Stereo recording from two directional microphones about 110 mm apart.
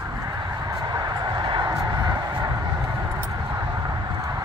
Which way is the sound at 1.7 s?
35° right (ahead or behind).